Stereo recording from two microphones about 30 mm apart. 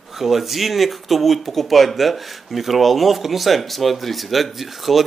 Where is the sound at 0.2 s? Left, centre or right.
Centre.